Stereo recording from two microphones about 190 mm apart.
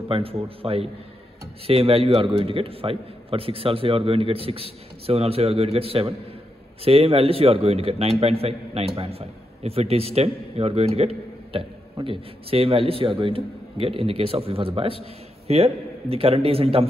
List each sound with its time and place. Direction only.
0.1 s a man's voice: 30° right (ahead or behind)